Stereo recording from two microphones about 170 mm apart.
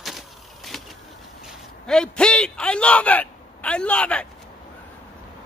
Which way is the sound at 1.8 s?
5° left (ahead or behind).